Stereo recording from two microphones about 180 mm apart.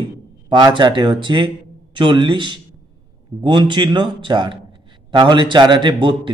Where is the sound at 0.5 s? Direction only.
25° right (ahead or behind).